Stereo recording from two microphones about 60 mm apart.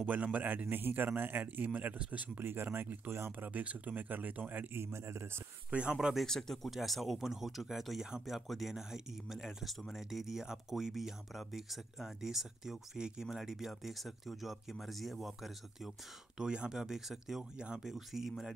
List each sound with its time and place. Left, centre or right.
0.0 s a man's voice: right
2.4 s a man's voice: right
3.3 s speech: right
4.7 s speech: right
5.7 s speech: centre
6.2 s speech: centre
16.3 s speech: centre
17.6 s speech: centre
17.8 s speech: centre